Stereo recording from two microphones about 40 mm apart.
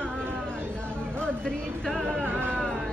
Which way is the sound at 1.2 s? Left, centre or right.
Left.